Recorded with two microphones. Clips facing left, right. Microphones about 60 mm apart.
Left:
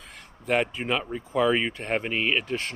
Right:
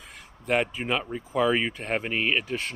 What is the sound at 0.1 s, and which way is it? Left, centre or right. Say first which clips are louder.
Speech: even; centre.